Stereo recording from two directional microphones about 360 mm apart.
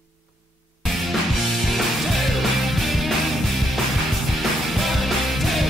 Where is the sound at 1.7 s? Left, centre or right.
Centre.